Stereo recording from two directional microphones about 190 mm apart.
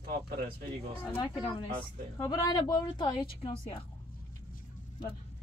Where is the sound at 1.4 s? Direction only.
25° left (ahead or behind).